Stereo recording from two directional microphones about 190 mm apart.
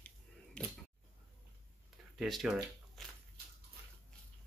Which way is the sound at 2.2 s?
Centre (ahead or behind).